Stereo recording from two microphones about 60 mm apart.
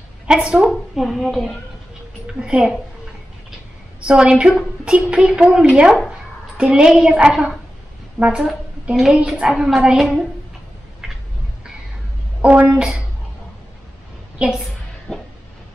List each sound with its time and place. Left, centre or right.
0.3 s a woman's voice: centre
0.9 s speech: centre
2.4 s a woman's voice: centre
4.0 s a woman's voice: centre
9.9 s speech: centre
12.4 s a woman's voice: centre
14.4 s a woman's voice: centre
15.1 s a sound: centre